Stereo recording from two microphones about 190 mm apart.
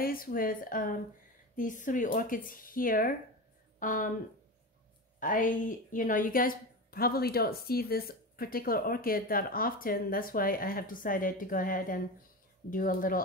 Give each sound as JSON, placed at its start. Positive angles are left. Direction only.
{"t": 0.0, "sound": "a woman's voice", "side_deg": 50}
{"t": 5.2, "sound": "a woman's voice", "side_deg": 45}